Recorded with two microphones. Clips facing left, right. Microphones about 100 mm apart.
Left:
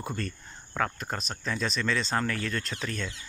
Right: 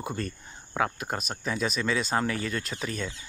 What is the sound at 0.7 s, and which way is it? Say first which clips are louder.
Speech: right 2 dB; 10° right (ahead or behind).